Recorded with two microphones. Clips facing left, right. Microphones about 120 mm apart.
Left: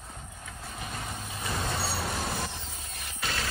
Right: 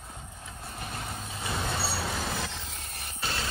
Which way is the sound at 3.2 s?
25° right (ahead or behind).